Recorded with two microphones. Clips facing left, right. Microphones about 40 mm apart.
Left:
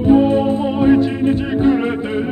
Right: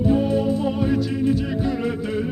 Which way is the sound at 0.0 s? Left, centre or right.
Left.